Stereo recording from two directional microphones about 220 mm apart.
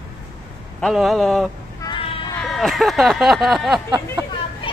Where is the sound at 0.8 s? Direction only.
Centre (ahead or behind).